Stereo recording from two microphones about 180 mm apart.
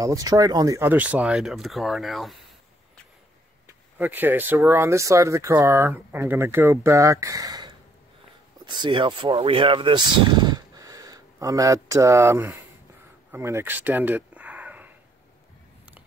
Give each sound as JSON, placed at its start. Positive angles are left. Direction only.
{"t": 0.0, "sound": "speech", "side_deg": -20}
{"t": 4.0, "sound": "speech", "side_deg": -10}
{"t": 13.3, "sound": "a sound", "side_deg": -15}